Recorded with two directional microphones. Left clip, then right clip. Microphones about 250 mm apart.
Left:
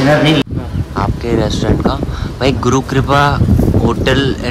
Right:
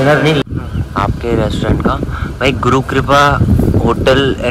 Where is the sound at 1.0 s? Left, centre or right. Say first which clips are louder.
Right 1 dB; centre.